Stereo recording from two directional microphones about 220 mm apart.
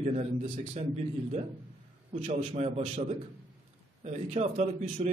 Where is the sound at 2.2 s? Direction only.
25° right (ahead or behind).